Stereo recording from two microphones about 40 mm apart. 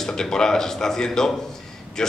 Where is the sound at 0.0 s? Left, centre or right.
Centre.